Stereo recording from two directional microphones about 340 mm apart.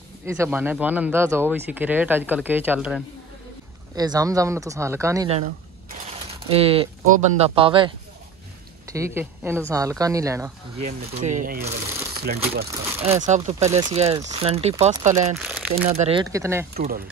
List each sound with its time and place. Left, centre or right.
0.4 s speech: centre
6.5 s speech: centre
10.8 s speech: centre
15.3 s speech: centre
15.7 s speech: centre
16.7 s speech: right